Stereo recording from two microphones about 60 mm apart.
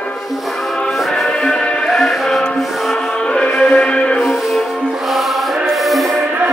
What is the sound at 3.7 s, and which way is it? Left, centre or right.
Music, centre.